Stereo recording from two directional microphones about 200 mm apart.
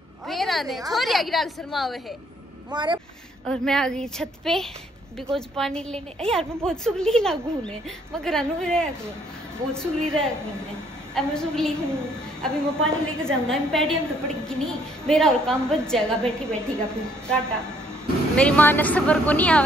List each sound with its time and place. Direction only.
0.3 s a woman's voice: centre (ahead or behind)
2.7 s speech: 25° right (ahead or behind)
3.4 s a woman's voice: 5° left (ahead or behind)